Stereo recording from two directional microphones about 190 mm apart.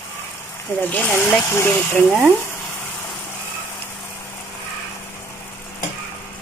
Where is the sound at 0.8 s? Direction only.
10° left (ahead or behind).